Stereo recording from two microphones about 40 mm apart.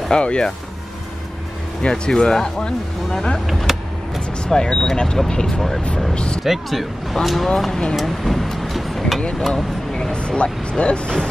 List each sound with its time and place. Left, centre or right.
0.1 s speech: left
1.8 s speech: left
3.7 s vehicle: centre
4.5 s speech: centre
6.4 s speech: centre
10.1 s speech: left